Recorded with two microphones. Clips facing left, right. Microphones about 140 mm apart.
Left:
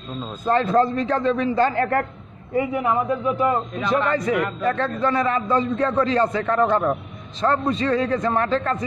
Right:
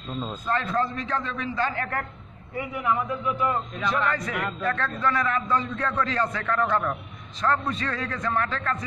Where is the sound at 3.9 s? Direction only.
25° left (ahead or behind).